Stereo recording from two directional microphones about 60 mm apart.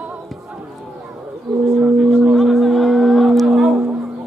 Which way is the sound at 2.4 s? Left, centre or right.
Centre.